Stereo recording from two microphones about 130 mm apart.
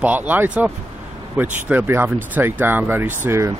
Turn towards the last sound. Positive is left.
turn(degrees=-20)  # may be behind; listen again after turning